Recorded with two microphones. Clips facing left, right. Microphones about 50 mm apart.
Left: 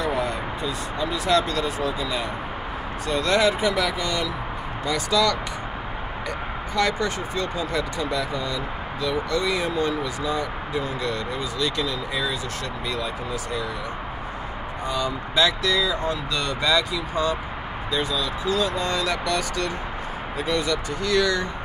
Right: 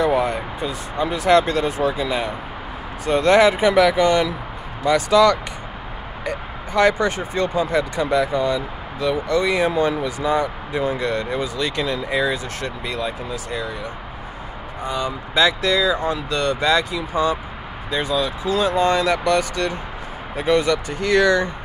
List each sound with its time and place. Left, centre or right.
0.0 s speech: right
6.2 s speech: right
14.9 s speech: right
15.8 s speech: centre
17.9 s speech: right